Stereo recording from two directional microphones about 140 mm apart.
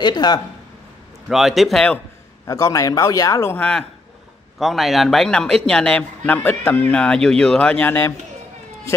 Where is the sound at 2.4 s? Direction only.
25° left (ahead or behind).